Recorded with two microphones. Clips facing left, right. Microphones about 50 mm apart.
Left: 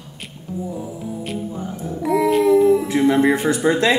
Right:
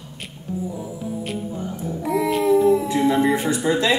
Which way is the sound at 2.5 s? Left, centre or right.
Left.